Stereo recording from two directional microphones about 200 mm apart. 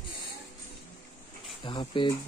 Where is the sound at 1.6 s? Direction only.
25° left (ahead or behind).